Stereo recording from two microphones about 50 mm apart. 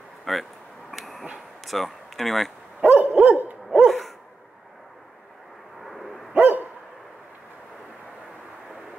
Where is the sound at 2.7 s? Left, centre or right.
Right.